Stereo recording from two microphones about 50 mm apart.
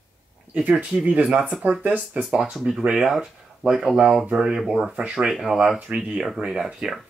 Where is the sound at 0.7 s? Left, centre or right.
Right.